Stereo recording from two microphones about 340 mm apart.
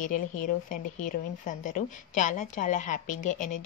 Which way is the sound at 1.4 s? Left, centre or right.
Left.